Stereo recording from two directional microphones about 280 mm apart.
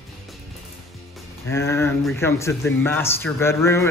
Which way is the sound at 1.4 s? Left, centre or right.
Centre.